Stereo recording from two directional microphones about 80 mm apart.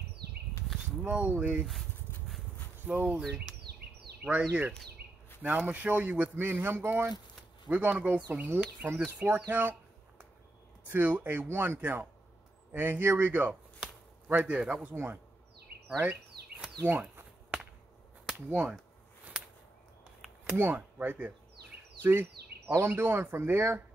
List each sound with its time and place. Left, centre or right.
1.0 s speech: centre
2.9 s speech: centre
3.2 s speech: centre
4.4 s speech: centre
7.6 s speech: centre
9.5 s a sound: right
10.9 s speech: right
13.7 s chop: centre
14.7 s speech: right
16.0 s a sound: centre
18.5 s speech: centre
20.5 s speech: right